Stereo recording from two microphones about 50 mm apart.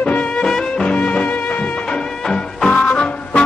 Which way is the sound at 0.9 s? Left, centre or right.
Left.